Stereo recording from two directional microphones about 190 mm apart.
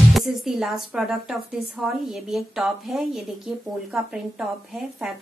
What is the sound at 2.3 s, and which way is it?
Speech, centre (ahead or behind).